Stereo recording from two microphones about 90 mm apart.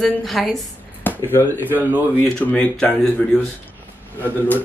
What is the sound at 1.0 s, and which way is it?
Speech, 20° left (ahead or behind).